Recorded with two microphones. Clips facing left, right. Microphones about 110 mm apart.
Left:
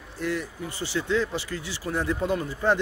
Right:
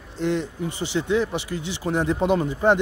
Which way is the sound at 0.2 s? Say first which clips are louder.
Right 5 dB; 25° right (ahead or behind).